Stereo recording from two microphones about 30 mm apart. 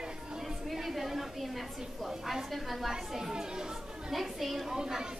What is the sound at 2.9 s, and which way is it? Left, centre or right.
Speech, centre.